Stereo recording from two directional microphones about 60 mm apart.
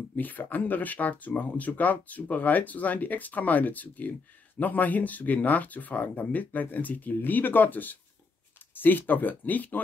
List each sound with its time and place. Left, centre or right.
0.1 s speech: left